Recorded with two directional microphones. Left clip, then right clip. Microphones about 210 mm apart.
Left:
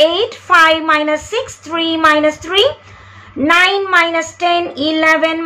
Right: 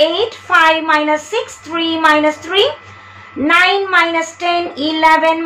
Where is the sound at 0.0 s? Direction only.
15° left (ahead or behind).